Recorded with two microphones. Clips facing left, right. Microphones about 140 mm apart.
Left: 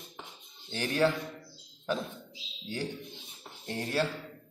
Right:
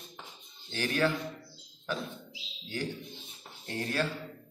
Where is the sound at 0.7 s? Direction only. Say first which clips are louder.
Left 2 dB; 25° left (ahead or behind).